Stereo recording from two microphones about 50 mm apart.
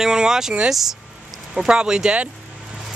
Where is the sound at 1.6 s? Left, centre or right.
Centre.